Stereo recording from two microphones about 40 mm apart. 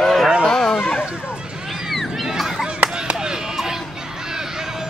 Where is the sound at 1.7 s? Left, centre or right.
Centre.